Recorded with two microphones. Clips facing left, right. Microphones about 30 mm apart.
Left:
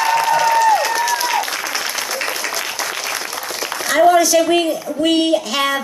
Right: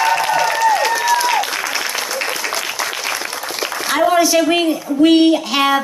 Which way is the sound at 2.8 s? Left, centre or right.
Centre.